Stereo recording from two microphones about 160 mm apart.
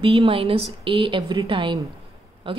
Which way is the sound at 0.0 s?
35° right (ahead or behind).